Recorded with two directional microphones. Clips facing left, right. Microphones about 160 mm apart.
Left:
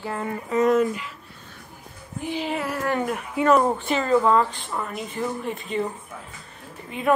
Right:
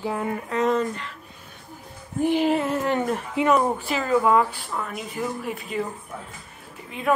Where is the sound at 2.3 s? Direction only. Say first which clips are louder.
Right 6 dB; 50° right (ahead or behind).